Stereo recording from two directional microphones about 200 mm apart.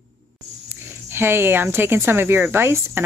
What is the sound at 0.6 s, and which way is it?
Speech, 10° right (ahead or behind).